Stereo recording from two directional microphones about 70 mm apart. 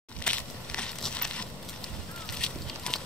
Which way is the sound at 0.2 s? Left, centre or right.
Centre.